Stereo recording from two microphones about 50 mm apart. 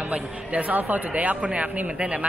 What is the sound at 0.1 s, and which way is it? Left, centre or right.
Speech, right.